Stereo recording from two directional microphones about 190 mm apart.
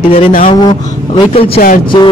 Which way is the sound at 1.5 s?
45° left (ahead or behind).